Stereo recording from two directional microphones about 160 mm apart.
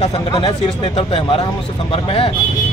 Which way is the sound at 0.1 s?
30° left (ahead or behind).